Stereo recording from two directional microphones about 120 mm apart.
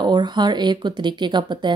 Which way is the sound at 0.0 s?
35° right (ahead or behind).